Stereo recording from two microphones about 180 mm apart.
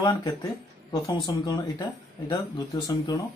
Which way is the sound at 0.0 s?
25° left (ahead or behind).